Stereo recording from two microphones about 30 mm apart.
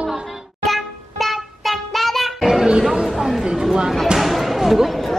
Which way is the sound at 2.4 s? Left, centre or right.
Centre.